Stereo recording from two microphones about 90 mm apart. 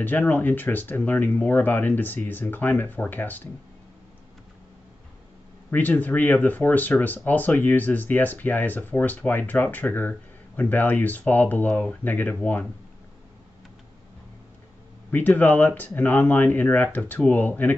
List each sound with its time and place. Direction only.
0.0 s speech: 20° left (ahead or behind)
5.7 s speech: 20° left (ahead or behind)
15.0 s speech: 20° left (ahead or behind)